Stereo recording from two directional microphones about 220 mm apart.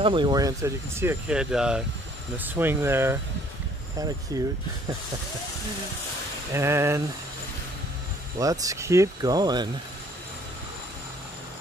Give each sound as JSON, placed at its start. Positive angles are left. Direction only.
{"t": 0.0, "sound": "speech", "side_deg": -20}
{"t": 4.3, "sound": "speech", "side_deg": -15}
{"t": 6.5, "sound": "speech", "side_deg": -10}
{"t": 8.4, "sound": "speech", "side_deg": -15}